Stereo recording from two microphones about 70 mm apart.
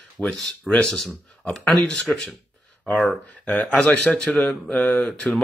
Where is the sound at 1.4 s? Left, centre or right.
Centre.